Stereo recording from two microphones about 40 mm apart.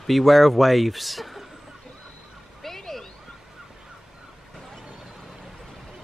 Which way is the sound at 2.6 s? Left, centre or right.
Centre.